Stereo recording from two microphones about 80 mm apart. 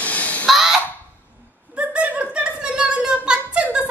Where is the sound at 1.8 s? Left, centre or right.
Centre.